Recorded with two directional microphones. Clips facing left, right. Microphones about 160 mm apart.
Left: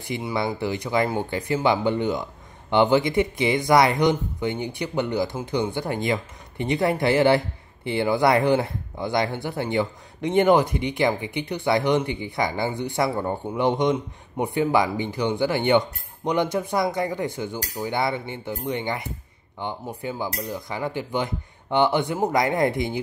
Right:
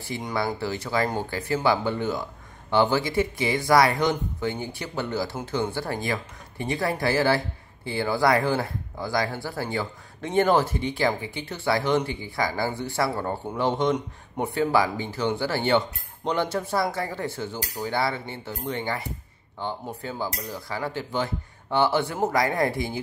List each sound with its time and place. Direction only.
0.1 s speech: 15° left (ahead or behind)